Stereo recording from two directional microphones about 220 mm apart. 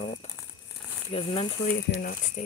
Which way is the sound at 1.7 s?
40° left (ahead or behind).